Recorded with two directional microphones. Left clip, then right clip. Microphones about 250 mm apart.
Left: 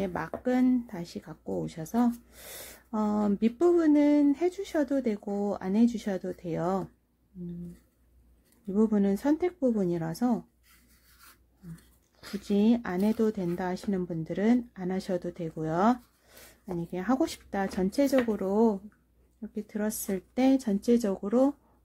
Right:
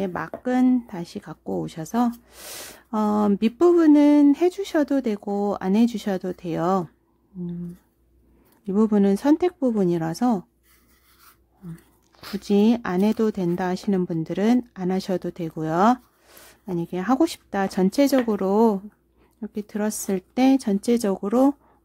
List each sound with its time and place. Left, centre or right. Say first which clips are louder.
0.0 s speech: right 4 dB; centre
8.6 s speech: right 7 dB; right
12.2 s speech: right 8 dB; right